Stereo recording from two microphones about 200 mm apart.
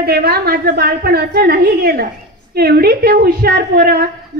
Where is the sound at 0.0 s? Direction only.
50° right (ahead or behind).